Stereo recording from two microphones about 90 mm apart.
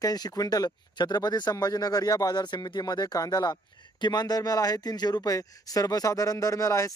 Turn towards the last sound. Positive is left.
turn(degrees=35)  # may be behind; listen again after turning